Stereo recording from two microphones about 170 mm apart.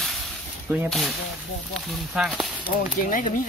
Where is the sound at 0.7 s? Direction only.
15° right (ahead or behind).